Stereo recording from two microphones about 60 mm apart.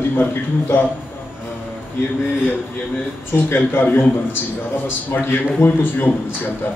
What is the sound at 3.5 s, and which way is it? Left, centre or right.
A man's voice, left.